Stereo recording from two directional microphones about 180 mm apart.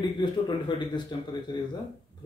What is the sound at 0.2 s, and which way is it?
A man's voice, 25° left (ahead or behind).